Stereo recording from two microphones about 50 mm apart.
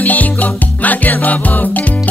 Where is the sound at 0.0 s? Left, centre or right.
Left.